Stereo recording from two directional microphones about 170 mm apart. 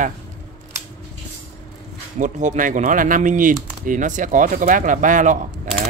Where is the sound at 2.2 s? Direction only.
45° right (ahead or behind).